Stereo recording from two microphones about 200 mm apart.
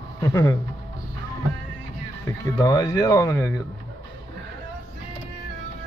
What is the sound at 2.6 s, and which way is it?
Speech, 20° left (ahead or behind).